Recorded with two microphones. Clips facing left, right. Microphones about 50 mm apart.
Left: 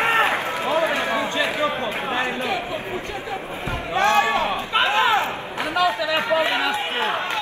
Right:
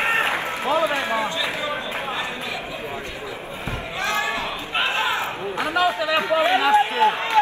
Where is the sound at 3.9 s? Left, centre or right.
Left.